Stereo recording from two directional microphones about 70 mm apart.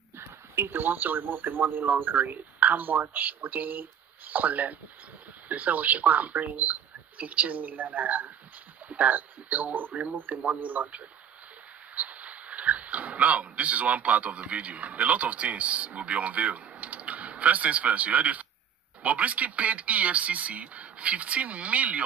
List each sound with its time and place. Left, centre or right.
0.6 s speech: right